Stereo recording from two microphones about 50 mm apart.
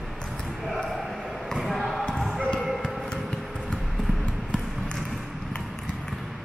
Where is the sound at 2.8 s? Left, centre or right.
Left.